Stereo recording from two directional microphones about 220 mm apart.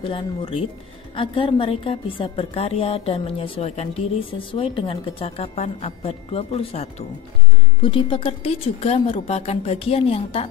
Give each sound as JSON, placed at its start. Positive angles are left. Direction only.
{"t": 0.0, "sound": "a woman's voice", "side_deg": 25}